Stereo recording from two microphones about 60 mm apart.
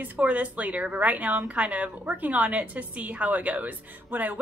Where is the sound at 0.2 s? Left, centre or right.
Right.